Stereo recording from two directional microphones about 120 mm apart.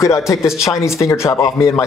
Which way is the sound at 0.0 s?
25° left (ahead or behind).